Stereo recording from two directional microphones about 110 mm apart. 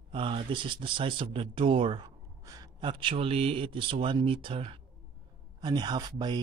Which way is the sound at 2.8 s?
50° right (ahead or behind).